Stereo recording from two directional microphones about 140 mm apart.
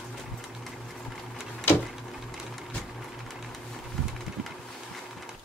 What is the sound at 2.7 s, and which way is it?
Sewing machine, centre (ahead or behind).